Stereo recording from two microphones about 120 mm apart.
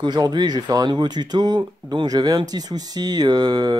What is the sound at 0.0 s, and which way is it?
Speech, 35° right (ahead or behind).